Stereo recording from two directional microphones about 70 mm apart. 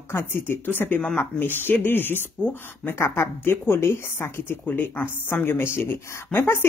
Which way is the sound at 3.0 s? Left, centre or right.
Left.